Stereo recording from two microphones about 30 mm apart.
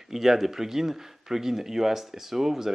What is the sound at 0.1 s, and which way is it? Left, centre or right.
Speech, centre.